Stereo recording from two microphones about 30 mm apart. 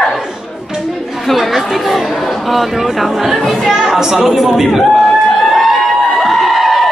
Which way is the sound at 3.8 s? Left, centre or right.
Centre.